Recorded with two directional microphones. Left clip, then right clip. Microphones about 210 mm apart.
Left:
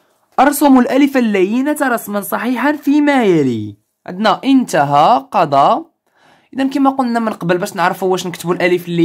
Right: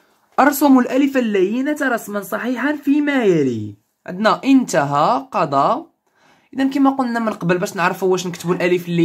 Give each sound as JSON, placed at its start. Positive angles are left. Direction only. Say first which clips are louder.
{"t": 0.4, "sound": "a woman's voice", "louder": "left 3 dB", "side_deg": 15}